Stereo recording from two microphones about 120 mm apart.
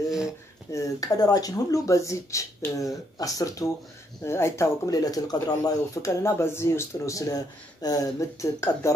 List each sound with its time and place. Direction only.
0.7 s speech: 25° left (ahead or behind)